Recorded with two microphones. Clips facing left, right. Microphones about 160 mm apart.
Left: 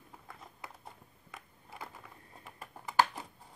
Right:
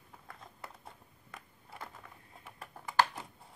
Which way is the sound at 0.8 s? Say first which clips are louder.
Left 1 dB; centre (ahead or behind).